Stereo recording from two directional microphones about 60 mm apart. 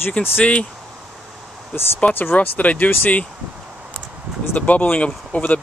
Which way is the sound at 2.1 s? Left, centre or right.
Left.